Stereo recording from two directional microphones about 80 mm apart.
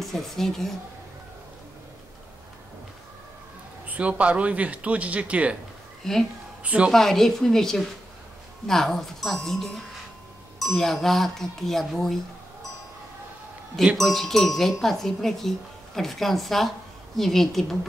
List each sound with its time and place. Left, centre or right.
0.0 s speech: centre
3.8 s speech: centre
6.0 s speech: centre
6.6 s speech: centre
6.9 s speech: centre
10.7 s speech: centre
13.9 s speech: centre